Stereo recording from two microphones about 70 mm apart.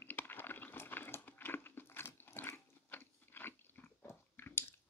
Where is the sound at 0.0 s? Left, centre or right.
Left.